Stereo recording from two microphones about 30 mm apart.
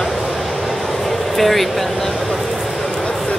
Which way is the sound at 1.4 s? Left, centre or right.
Centre.